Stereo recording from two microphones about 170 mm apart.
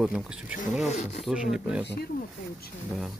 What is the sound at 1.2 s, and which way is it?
Speech, 5° right (ahead or behind).